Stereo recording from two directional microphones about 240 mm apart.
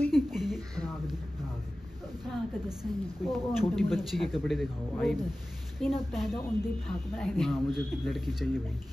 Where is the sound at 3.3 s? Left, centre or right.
Centre.